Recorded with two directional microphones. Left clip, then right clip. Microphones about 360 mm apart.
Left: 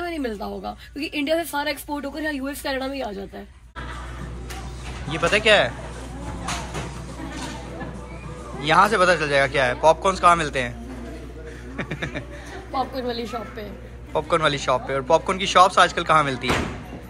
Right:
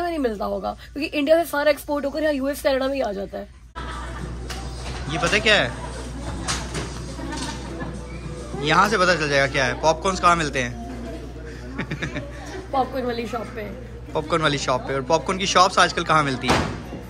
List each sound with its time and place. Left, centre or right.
0.0 s speech: centre
1.5 s speech: centre
2.7 s speech: centre
5.1 s speech: centre
8.6 s speech: centre
11.7 s a sound: centre
12.7 s speech: centre